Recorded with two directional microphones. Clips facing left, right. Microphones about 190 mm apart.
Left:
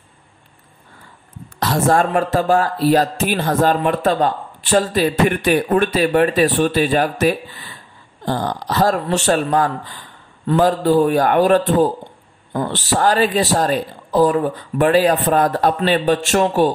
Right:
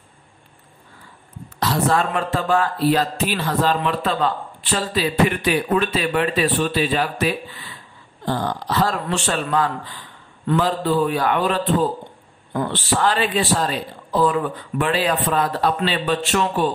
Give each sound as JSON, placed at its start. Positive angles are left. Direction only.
{"t": 1.6, "sound": "speech", "side_deg": 45}